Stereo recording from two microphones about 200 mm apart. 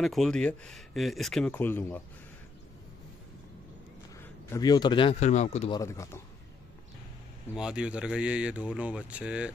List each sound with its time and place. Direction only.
0.0 s speech: centre (ahead or behind)
4.2 s a man's voice: 15° left (ahead or behind); by 5.7 s 35° left (ahead or behind)
5.7 s speech: 15° left (ahead or behind)
7.5 s speech: 5° right (ahead or behind)